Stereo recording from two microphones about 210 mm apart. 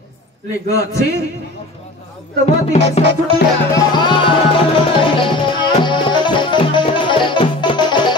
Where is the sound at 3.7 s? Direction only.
20° left (ahead or behind).